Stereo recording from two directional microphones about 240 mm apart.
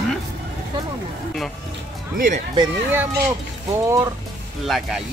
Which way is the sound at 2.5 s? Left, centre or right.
Centre.